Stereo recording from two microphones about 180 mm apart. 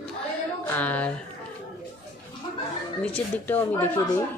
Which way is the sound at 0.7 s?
10° left (ahead or behind).